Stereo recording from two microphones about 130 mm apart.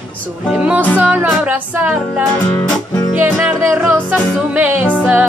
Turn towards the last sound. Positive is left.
turn(degrees=-15)  # may be behind; listen again after turning